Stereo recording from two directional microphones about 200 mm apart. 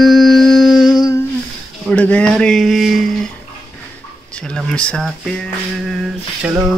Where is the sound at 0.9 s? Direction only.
15° left (ahead or behind).